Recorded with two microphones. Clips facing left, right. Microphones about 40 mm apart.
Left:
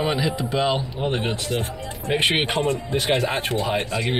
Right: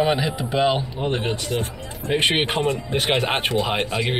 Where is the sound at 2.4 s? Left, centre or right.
Right.